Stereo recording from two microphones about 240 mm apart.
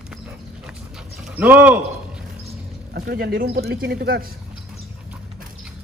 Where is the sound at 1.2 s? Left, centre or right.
Centre.